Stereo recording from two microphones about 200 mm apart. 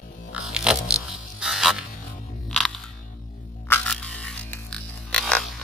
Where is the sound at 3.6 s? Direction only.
10° left (ahead or behind).